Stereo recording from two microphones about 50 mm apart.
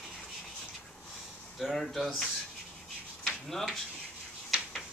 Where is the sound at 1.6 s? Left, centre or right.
Centre.